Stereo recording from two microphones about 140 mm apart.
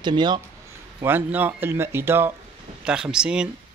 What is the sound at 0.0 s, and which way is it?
Speech, 35° right (ahead or behind).